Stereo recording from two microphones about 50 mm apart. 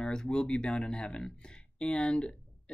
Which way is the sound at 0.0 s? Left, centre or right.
Centre.